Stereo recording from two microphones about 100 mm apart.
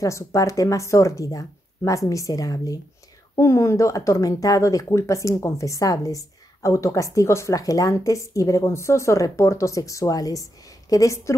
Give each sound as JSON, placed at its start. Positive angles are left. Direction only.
{"t": 0.0, "sound": "speech", "side_deg": 35}